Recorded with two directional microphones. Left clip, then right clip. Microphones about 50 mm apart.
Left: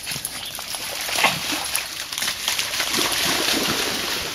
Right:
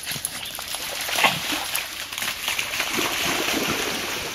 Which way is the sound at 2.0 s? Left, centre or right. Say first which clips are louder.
Left 2 dB; left.